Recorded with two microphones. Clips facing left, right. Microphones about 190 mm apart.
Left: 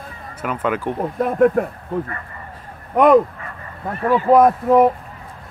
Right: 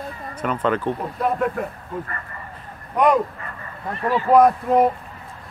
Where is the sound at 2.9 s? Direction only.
55° left (ahead or behind).